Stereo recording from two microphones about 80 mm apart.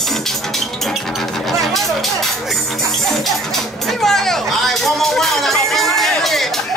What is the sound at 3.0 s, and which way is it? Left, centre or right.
Speech, centre.